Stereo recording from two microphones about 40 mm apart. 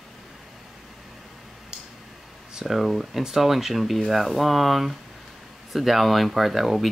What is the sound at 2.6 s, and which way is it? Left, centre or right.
Speech, centre.